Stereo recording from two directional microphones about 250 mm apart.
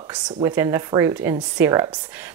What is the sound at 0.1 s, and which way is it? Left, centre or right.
Speech, centre.